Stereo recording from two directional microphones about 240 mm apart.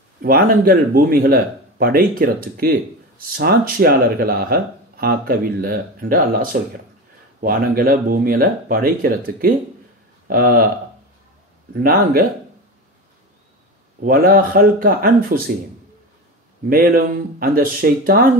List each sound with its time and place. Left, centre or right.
0.2 s speech: right
11.7 s speech: right
14.0 s speech: right
16.6 s speech: right